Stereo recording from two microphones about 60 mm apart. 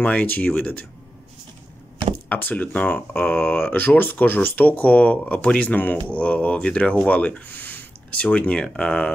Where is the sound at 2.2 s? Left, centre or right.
Left.